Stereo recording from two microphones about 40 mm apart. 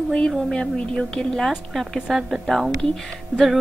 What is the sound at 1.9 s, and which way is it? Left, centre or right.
Speech, centre.